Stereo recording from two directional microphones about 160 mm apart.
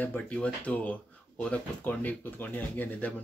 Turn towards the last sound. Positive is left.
turn(degrees=10)  # may be behind; listen again after turning